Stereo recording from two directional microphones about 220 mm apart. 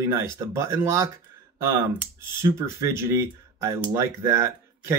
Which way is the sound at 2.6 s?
10° right (ahead or behind).